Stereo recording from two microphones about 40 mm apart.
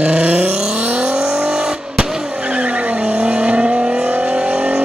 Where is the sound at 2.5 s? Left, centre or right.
Right.